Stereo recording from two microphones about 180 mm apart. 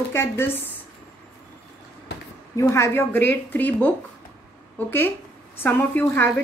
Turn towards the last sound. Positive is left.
turn(degrees=10)  # may be behind; listen again after turning